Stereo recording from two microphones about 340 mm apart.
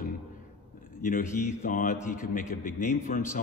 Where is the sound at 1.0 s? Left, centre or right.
Left.